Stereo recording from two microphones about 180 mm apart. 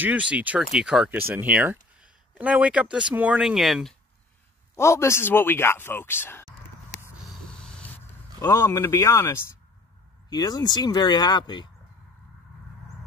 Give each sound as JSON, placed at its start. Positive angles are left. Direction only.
{"t": 0.0, "sound": "speech", "side_deg": -5}
{"t": 4.7, "sound": "speech", "side_deg": 15}
{"t": 7.2, "sound": "a sound", "side_deg": 5}
{"t": 8.4, "sound": "speech", "side_deg": 20}